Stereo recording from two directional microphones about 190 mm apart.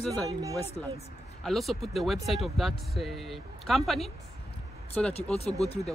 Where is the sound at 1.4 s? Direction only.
Centre (ahead or behind).